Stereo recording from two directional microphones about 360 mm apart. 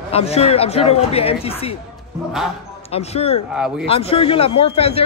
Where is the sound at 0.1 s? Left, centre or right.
Centre.